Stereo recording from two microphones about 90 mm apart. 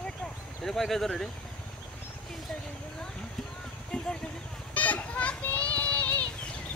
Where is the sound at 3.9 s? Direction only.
10° left (ahead or behind).